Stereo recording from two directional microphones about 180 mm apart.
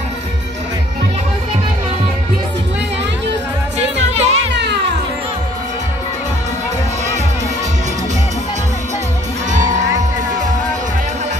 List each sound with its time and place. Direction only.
4.1 s music: 35° right (ahead or behind)
4.6 s music: 70° right (ahead or behind)